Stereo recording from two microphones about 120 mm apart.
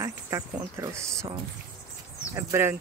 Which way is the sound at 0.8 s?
20° right (ahead or behind).